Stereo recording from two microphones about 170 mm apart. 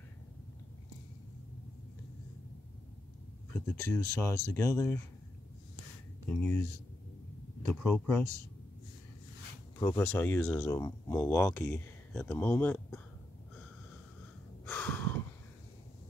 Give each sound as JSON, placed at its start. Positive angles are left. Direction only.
{"t": 3.5, "sound": "speech", "side_deg": 15}
{"t": 7.6, "sound": "speech", "side_deg": 10}
{"t": 9.8, "sound": "speech", "side_deg": 15}
{"t": 14.7, "sound": "gasp", "side_deg": 10}